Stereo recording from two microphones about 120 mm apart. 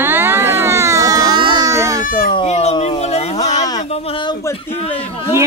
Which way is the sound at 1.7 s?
25° right (ahead or behind).